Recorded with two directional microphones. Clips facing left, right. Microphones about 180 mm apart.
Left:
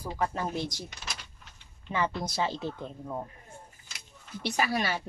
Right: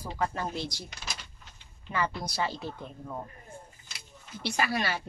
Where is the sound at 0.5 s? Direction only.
20° left (ahead or behind).